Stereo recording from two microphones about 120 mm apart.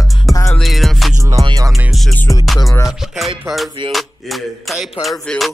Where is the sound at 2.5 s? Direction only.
25° left (ahead or behind).